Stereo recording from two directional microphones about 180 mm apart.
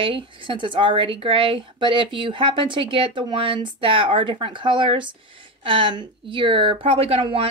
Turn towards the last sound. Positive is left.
turn(degrees=-30)  # may be behind; listen again after turning